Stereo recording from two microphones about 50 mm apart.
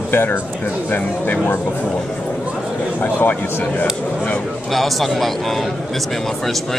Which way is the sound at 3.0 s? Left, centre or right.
Left.